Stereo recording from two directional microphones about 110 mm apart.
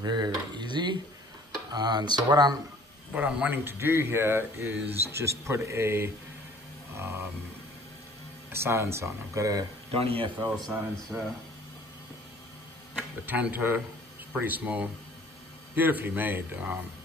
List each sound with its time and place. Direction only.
0.0 s a sound: 40° right (ahead or behind)
1.7 s speech: 40° right (ahead or behind)
3.2 s speech: 10° right (ahead or behind)
8.5 s speech: 25° right (ahead or behind)
9.9 s speech: 55° right (ahead or behind)
11.1 s speech: 20° right (ahead or behind)
13.3 s speech: 15° right (ahead or behind)